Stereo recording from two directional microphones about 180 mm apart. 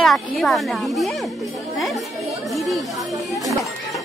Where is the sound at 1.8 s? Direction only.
Centre (ahead or behind).